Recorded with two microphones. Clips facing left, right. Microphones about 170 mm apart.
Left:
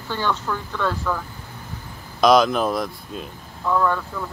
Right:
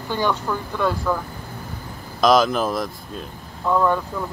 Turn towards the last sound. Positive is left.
turn(degrees=-15)  # may be behind; listen again after turning